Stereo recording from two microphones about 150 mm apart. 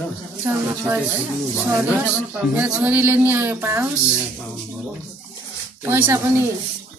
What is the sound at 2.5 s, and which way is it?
A woman's voice, 10° right (ahead or behind).